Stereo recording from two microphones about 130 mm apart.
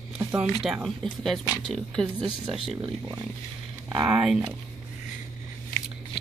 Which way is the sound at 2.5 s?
35° right (ahead or behind).